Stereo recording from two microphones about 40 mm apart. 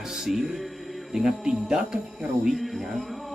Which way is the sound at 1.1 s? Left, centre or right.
Centre.